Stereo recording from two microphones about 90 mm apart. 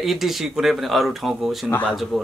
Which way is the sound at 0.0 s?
Centre (ahead or behind).